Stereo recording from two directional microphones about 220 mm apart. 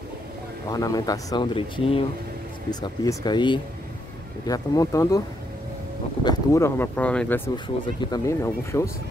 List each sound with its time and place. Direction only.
0.7 s speech: 15° left (ahead or behind)
6.2 s speech: 15° left (ahead or behind)
7.5 s speech: 20° left (ahead or behind)